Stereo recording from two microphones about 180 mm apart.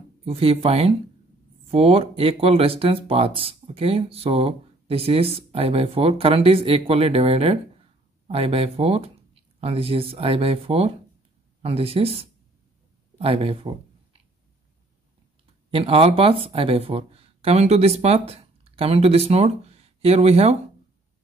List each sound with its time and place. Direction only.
0.2 s speech: 30° right (ahead or behind)
15.7 s speech: 30° right (ahead or behind)